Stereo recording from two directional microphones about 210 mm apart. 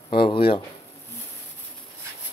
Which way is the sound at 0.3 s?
25° left (ahead or behind).